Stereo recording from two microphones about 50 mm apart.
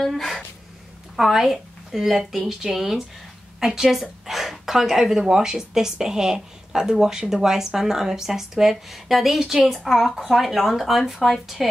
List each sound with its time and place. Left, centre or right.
0.0 s a woman's voice: centre